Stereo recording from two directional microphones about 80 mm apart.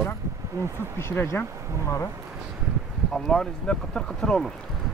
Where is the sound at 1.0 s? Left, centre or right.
Left.